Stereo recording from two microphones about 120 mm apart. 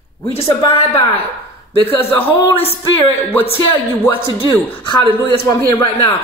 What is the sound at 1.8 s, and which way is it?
Speech, 15° left (ahead or behind).